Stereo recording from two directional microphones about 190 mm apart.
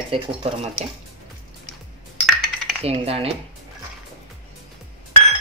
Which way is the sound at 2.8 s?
30° right (ahead or behind).